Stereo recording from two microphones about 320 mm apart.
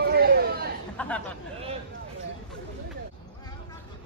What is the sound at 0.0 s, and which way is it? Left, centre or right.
Chatter, right.